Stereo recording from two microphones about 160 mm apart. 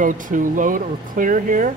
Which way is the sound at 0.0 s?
55° right (ahead or behind).